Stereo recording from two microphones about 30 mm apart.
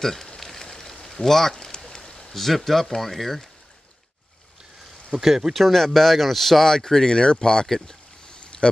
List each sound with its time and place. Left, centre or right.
0.0 s speech: centre
0.4 s a sound: centre
2.3 s speech: centre
5.2 s speech: centre
5.5 s speech: centre
6.7 s speech: centre
7.8 s a sound: centre
8.4 s boat: left